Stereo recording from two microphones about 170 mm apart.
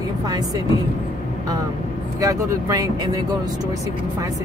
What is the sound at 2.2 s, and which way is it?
Speech, 20° right (ahead or behind).